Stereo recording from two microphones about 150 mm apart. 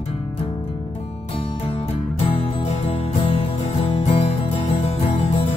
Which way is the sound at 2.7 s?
45° left (ahead or behind).